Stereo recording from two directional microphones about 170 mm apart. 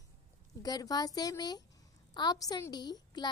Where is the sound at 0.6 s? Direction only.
20° left (ahead or behind).